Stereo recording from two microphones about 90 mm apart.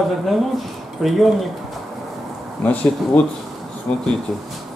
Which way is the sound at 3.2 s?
15° left (ahead or behind).